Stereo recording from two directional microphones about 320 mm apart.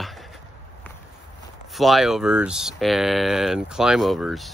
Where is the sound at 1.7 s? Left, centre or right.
Centre.